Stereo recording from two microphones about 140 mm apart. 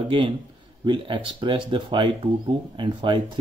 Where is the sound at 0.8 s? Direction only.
35° right (ahead or behind).